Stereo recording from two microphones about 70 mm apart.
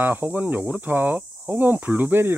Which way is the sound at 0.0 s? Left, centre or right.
Right.